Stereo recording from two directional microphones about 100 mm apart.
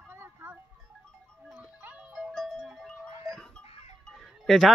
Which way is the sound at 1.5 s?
15° right (ahead or behind).